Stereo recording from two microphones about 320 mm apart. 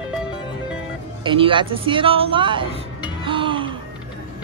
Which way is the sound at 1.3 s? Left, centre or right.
Centre.